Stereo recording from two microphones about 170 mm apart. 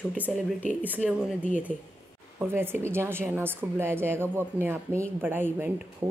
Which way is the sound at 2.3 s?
15° right (ahead or behind).